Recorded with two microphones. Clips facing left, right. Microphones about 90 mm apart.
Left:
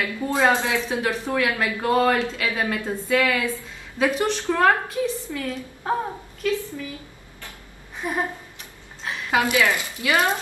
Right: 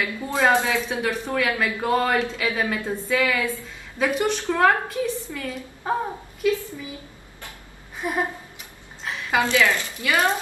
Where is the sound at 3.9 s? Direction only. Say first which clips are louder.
Left 1 dB; centre (ahead or behind).